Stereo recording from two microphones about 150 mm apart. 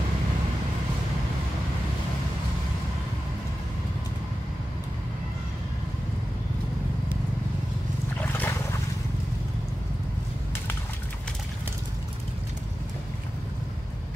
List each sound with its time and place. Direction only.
8.2 s boat: 15° left (ahead or behind)